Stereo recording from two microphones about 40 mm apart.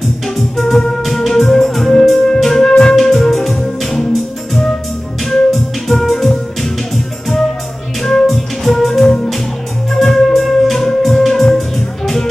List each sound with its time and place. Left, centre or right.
0.6 s music: centre
8.3 s music: centre
9.0 s music: left
9.9 s music: centre